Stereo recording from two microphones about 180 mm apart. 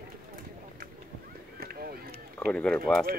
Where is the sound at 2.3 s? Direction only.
5° left (ahead or behind).